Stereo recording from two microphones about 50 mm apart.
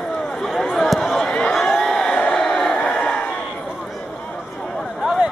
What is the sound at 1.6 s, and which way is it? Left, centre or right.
Crowd, centre.